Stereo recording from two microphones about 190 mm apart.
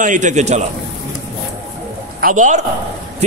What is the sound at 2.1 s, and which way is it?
Speech, 45° right (ahead or behind).